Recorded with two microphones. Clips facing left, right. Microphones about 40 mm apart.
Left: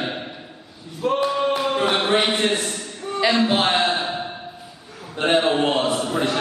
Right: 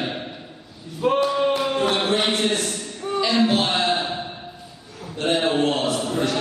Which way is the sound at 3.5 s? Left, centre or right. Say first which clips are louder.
Left 2 dB; left.